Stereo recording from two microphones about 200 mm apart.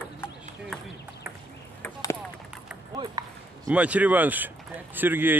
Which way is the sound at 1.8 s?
15° left (ahead or behind).